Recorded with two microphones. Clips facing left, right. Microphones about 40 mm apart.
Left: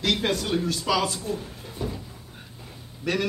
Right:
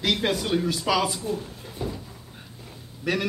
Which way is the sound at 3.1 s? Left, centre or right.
Centre.